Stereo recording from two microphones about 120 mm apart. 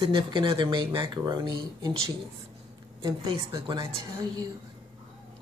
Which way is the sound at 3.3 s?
45° right (ahead or behind).